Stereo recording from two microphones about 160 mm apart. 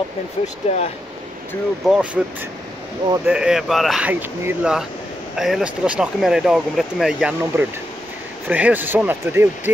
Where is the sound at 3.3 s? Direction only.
5° right (ahead or behind).